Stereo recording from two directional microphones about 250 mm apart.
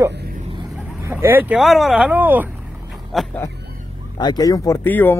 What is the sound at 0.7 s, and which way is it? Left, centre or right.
Speech, centre.